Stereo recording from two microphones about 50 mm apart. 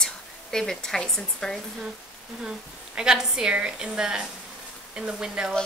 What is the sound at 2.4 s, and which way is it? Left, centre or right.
A woman's voice, centre.